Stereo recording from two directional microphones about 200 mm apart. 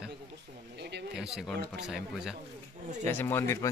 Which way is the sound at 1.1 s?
Centre (ahead or behind).